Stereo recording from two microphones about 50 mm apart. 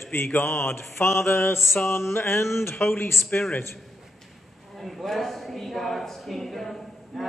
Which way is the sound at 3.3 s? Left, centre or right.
Left.